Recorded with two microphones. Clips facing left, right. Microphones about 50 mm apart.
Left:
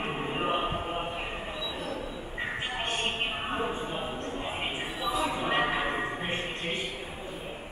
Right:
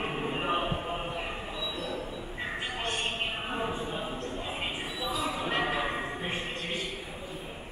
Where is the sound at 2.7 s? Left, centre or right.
Left.